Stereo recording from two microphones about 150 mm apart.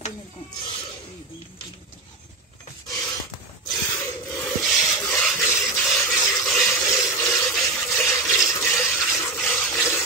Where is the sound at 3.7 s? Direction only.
20° left (ahead or behind).